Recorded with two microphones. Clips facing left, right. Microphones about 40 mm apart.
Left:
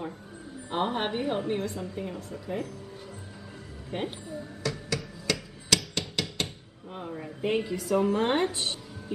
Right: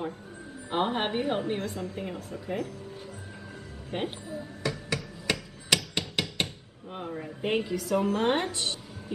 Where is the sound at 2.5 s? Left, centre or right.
Right.